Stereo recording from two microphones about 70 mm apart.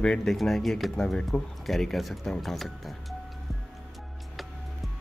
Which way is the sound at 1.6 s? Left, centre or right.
Centre.